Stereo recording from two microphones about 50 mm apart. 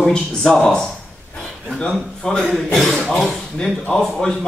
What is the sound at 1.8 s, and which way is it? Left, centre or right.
Speech, centre.